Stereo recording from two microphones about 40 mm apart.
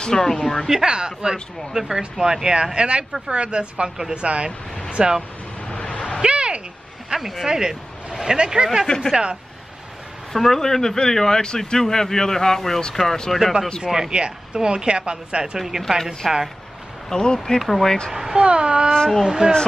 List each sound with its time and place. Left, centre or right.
0.0 s a man's voice: centre
0.8 s speech: right
5.7 s a sound: left
6.2 s a sound: right
7.1 s speech: centre; by 9.4 s right
10.3 s a man's voice: centre
13.4 s speech: centre
14.1 s speech: right
16.2 s speech: centre
17.1 s speech: centre
17.6 s speech: centre
17.8 s speech: centre
18.3 s speech: right